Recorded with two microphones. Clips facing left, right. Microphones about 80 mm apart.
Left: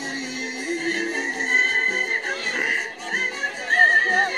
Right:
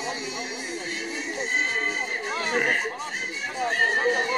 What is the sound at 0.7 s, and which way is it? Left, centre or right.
Music, left.